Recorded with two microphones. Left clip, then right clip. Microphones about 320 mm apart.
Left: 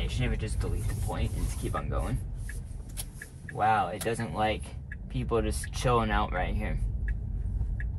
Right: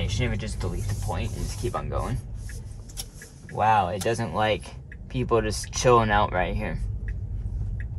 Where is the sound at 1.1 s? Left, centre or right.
Right.